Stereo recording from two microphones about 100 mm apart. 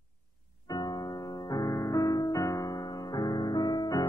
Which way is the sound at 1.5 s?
35° left (ahead or behind).